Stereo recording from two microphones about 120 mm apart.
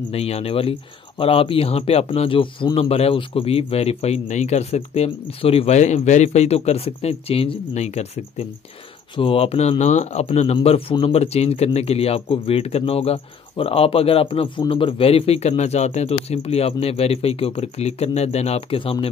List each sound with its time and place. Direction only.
0.1 s a man's voice: 55° left (ahead or behind)
9.1 s a man's voice: 50° left (ahead or behind); by 10.2 s 75° left (ahead or behind)
10.2 s a man's voice: 60° left (ahead or behind)